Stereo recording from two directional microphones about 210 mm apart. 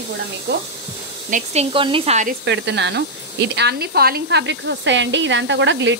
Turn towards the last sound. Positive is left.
turn(degrees=-60)  # may be behind; listen again after turning